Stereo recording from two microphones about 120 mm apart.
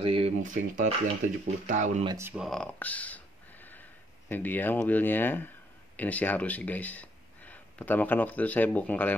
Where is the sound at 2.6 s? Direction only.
10° left (ahead or behind).